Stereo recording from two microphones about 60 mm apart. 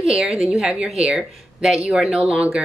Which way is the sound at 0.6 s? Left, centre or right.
Centre.